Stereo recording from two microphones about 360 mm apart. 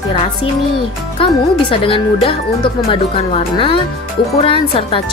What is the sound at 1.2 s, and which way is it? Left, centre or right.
Speech, centre.